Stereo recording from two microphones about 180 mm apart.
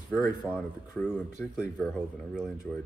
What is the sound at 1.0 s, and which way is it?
Speech, 5° right (ahead or behind).